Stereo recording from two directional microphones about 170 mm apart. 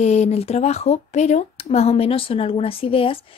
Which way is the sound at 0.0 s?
40° left (ahead or behind).